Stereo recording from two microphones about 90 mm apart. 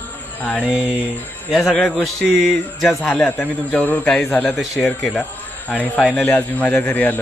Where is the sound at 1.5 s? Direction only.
Centre (ahead or behind).